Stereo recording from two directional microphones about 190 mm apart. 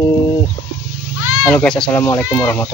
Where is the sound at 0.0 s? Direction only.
20° left (ahead or behind).